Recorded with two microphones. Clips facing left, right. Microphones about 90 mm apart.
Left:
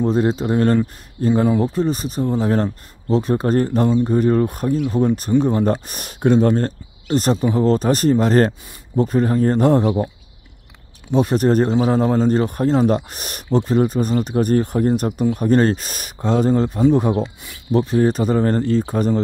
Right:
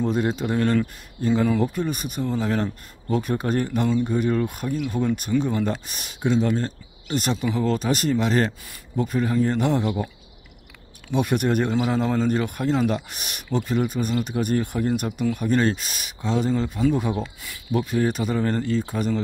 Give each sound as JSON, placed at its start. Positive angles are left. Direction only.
{"t": 0.1, "sound": "speech", "side_deg": 30}
{"t": 1.3, "sound": "speech", "side_deg": 20}
{"t": 1.7, "sound": "speech", "side_deg": 30}
{"t": 11.1, "sound": "speech", "side_deg": 30}
{"t": 17.2, "sound": "speech", "side_deg": 20}
{"t": 17.6, "sound": "speech", "side_deg": 35}